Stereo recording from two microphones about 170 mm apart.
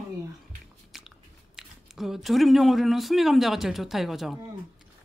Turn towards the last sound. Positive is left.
turn(degrees=0)  # may be behind; listen again after turning